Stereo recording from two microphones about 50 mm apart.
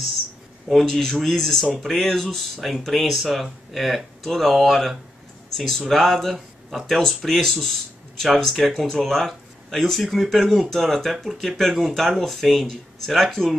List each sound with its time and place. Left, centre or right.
0.8 s speech: centre